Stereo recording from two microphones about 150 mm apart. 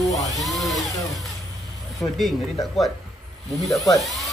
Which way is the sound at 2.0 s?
Centre (ahead or behind).